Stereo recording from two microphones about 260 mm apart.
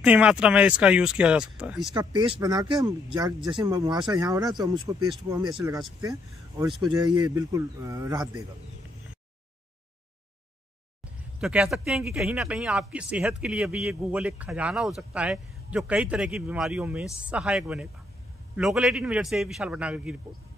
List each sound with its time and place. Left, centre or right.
0.0 s speech: centre
2.0 s speech: centre
6.8 s speech: centre
11.3 s speech: centre